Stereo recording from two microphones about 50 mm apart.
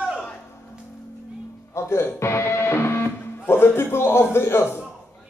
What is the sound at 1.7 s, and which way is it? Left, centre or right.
Speech, left.